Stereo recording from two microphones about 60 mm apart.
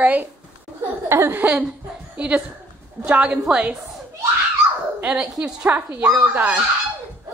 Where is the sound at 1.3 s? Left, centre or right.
Right.